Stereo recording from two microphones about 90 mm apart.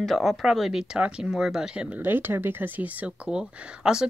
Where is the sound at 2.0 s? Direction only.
20° right (ahead or behind).